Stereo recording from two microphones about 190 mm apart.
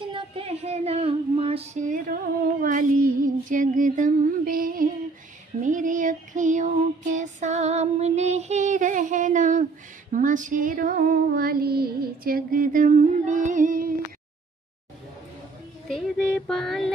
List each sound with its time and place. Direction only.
0.1 s female singing: 30° right (ahead or behind)
10.1 s child singing: 40° right (ahead or behind)
15.9 s child singing: centre (ahead or behind)